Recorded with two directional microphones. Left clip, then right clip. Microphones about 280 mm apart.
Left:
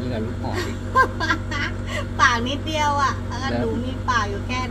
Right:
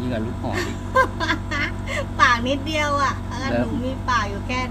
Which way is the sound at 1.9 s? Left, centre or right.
Right.